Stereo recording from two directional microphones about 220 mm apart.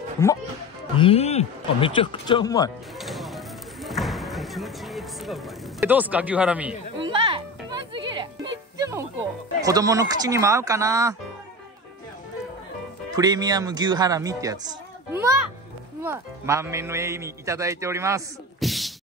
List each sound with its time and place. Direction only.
0.2 s speech: 10° left (ahead or behind)
0.9 s speech: 25° left (ahead or behind)
3.0 s a sound: centre (ahead or behind)
7.1 s music: 25° right (ahead or behind)
9.7 s a man's voice: 15° right (ahead or behind)
13.1 s a man's voice: 20° right (ahead or behind)
18.6 s a sound: centre (ahead or behind)